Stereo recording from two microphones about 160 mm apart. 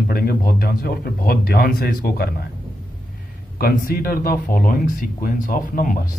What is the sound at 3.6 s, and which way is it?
Speech, 65° left (ahead or behind).